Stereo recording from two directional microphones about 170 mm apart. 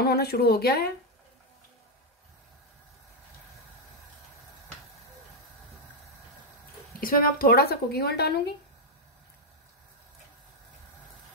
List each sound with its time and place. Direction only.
0.0 s speech: 70° left (ahead or behind)
7.0 s speech: 55° left (ahead or behind)